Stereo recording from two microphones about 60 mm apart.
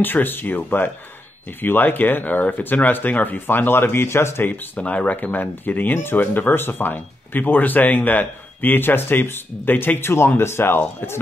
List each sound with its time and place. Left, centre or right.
0.0 s speech: left
4.5 s speech: left